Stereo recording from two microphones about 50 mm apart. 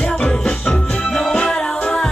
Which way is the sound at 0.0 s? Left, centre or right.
Centre.